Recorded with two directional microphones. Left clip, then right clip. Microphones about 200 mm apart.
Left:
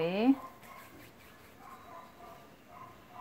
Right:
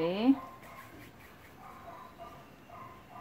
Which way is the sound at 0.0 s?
35° left (ahead or behind).